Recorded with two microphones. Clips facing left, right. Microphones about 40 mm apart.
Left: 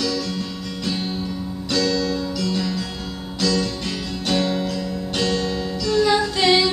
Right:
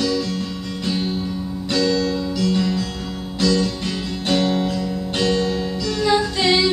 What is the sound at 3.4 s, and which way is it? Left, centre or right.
Music, centre.